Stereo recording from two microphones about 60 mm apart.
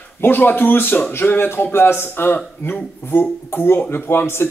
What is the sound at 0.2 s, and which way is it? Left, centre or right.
Speech, left.